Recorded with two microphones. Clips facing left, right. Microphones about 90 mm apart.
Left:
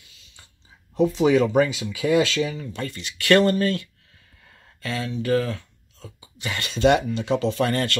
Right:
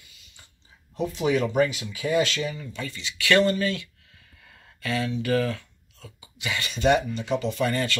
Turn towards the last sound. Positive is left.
turn(degrees=65)  # may be behind; listen again after turning